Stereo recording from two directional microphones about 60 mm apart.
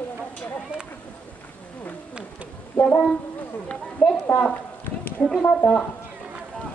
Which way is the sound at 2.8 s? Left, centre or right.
Left.